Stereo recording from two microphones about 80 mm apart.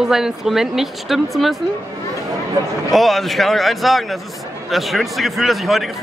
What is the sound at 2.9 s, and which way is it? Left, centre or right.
Speech, centre.